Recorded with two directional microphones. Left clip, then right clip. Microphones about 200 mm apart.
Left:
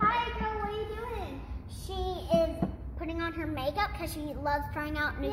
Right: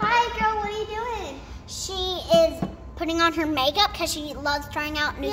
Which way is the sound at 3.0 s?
40° right (ahead or behind).